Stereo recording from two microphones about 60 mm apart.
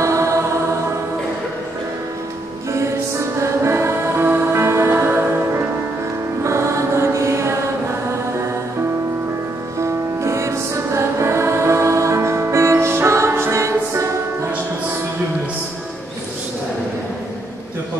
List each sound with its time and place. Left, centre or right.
0.0 s music: right
3.3 s music: right
4.9 s music: right
6.4 s music: right
9.8 s music: right